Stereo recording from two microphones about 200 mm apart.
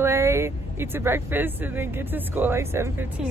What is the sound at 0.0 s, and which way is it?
Speech, 15° right (ahead or behind).